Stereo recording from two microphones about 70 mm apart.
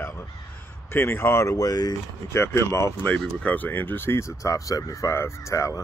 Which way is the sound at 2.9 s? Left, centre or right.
Left.